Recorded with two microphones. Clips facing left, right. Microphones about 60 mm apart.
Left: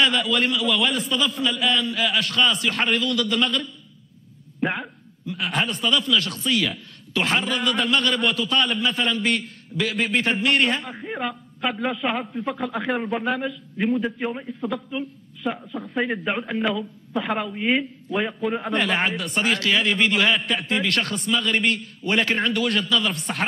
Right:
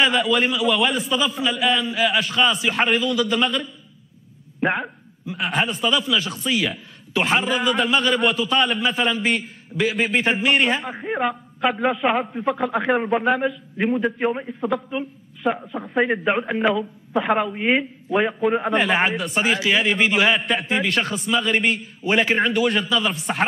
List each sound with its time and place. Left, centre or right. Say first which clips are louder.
0.0 s a man's voice: right 2 dB; centre
4.6 s a man's voice: right 5 dB; centre
5.3 s a man's voice: right 2 dB; centre
11.1 s a man's voice: right 7 dB; centre
14.2 s a man's voice: right 5 dB; right